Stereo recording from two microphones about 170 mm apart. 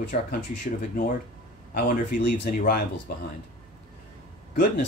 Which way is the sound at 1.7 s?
65° left (ahead or behind).